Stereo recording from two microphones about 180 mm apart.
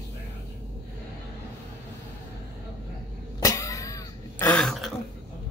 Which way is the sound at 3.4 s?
20° left (ahead or behind).